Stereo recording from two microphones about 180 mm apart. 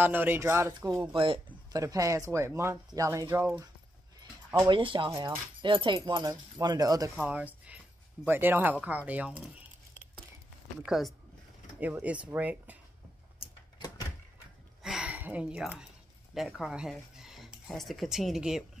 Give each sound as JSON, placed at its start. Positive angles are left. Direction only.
{"t": 0.0, "sound": "speech", "side_deg": -10}
{"t": 1.1, "sound": "speech", "side_deg": -30}
{"t": 1.8, "sound": "speech", "side_deg": -20}
{"t": 4.6, "sound": "speech", "side_deg": -25}
{"t": 7.2, "sound": "speech", "side_deg": -10}
{"t": 10.8, "sound": "speech", "side_deg": 0}
{"t": 13.7, "sound": "door", "side_deg": 20}
{"t": 14.8, "sound": "a sound", "side_deg": -5}
{"t": 16.3, "sound": "speech", "side_deg": 0}